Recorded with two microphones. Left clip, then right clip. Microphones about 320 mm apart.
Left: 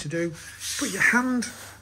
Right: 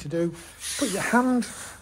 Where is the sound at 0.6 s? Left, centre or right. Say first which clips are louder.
Right 2 dB; right.